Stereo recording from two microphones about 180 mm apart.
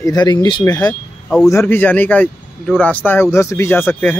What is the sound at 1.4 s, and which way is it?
Speech, 15° left (ahead or behind).